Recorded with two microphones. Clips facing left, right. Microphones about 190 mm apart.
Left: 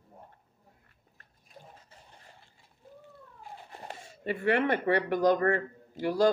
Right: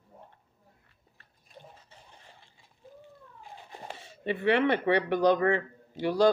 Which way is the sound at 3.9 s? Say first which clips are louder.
Right 2 dB; 45° left (ahead or behind).